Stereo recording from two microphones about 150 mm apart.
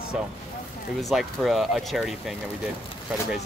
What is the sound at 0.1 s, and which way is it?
Speech, 5° right (ahead or behind).